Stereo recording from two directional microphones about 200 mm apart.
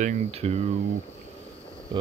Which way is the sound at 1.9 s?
20° right (ahead or behind).